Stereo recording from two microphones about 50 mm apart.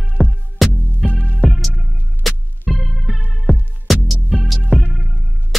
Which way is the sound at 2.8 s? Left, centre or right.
Centre.